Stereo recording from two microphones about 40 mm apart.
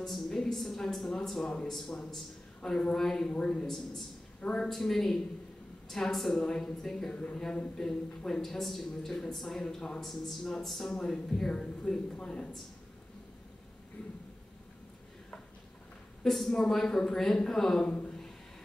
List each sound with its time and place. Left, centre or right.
0.0 s a woman's voice: centre
4.6 s a woman's voice: centre; by 12.4 s left
16.3 s a woman's voice: centre
17.8 s speech: left